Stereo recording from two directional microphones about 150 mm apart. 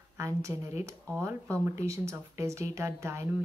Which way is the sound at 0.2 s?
20° right (ahead or behind).